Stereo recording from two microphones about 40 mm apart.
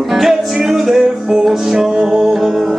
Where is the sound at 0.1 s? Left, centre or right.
Centre.